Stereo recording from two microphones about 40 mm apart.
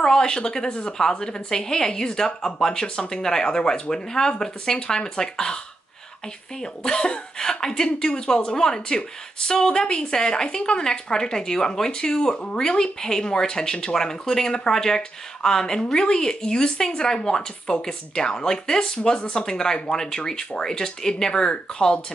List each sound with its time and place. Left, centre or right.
0.0 s a woman's voice: centre
1.2 s speech: centre
6.6 s speech: left